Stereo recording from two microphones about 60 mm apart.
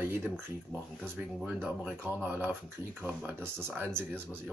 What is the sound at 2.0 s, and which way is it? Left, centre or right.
Speech, right.